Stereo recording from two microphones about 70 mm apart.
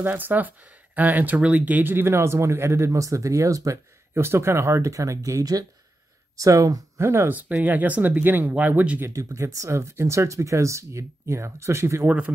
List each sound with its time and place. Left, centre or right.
0.0 s speech: right
4.2 s speech: right
5.4 s speech: right
6.3 s speech: right
7.2 s speech: right
9.1 s speech: right